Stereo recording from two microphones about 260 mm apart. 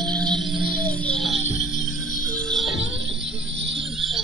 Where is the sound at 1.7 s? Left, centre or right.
Left.